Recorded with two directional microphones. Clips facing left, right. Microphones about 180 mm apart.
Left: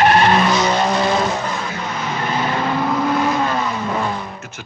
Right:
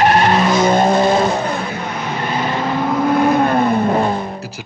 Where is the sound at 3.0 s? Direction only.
55° right (ahead or behind).